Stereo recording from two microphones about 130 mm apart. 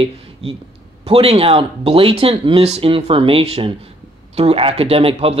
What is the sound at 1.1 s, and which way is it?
Speech, 50° right (ahead or behind).